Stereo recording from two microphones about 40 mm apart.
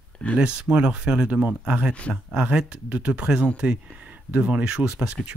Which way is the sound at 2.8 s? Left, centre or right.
Right.